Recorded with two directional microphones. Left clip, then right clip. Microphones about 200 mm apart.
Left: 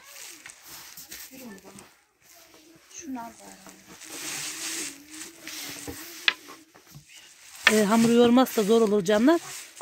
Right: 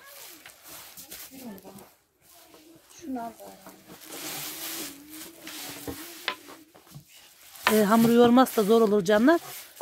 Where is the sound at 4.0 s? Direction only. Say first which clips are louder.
Left 2 dB; 55° right (ahead or behind).